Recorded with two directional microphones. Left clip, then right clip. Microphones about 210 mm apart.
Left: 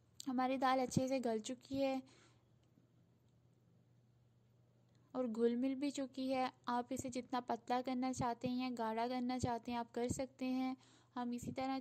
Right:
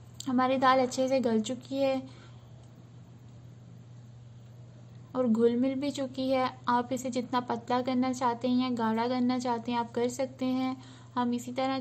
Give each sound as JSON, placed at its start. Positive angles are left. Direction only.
{"t": 0.2, "sound": "a woman's voice", "side_deg": 40}
{"t": 5.1, "sound": "a woman's voice", "side_deg": 40}